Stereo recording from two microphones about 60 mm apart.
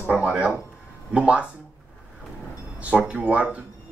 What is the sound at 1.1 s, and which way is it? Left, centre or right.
Speech, centre.